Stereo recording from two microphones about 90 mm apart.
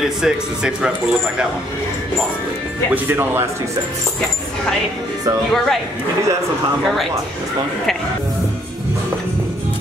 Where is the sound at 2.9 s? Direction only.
25° right (ahead or behind).